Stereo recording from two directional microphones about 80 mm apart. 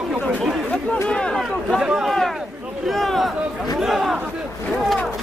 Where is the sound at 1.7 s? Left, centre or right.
Centre.